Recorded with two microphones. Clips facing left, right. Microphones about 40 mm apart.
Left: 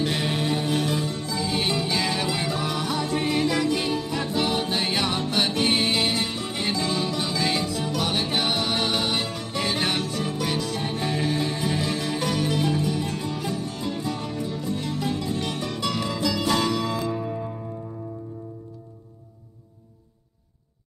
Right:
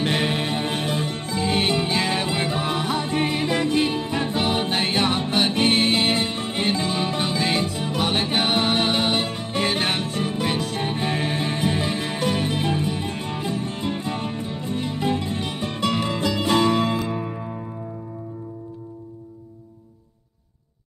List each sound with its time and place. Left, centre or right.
0.0 s music: right
6.1 s music: right
15.4 s music: centre